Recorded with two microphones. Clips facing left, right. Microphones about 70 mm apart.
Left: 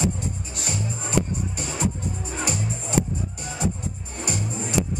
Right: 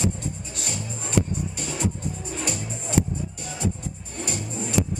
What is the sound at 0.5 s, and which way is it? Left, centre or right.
Music, left.